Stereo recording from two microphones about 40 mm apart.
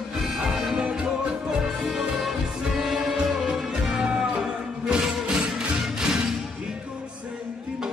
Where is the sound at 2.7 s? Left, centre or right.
Centre.